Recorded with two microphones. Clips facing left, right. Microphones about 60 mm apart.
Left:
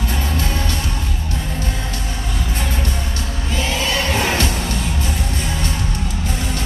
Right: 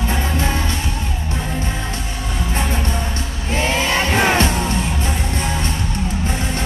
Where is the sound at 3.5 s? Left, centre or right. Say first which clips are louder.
Right 3 dB; right.